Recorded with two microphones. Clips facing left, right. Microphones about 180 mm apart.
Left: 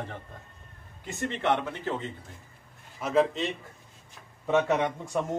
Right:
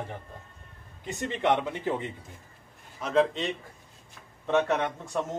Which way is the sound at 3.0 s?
5° left (ahead or behind).